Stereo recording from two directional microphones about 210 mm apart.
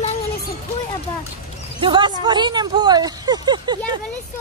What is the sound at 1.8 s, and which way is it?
Speech, 20° right (ahead or behind).